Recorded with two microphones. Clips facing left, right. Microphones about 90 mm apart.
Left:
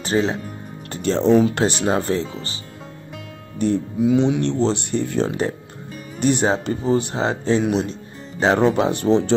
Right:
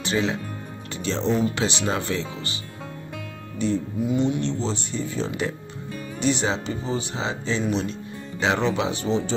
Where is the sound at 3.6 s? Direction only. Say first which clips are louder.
Left 4 dB; 55° left (ahead or behind).